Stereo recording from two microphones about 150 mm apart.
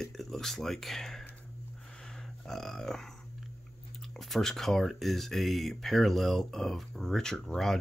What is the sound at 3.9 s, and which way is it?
Speech, centre (ahead or behind).